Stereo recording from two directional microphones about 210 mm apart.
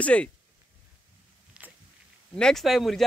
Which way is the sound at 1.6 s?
5° right (ahead or behind).